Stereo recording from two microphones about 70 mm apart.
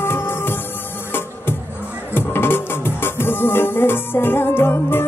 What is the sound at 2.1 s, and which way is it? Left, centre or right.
Music, left.